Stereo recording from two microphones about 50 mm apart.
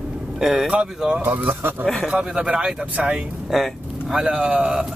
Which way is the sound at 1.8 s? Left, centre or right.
Centre.